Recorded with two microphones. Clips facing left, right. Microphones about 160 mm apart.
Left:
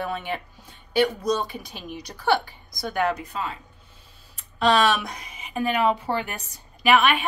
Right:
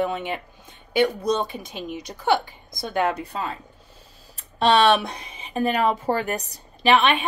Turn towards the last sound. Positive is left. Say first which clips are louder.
# right 1 dB
turn(degrees=-25)  # may be behind; listen again after turning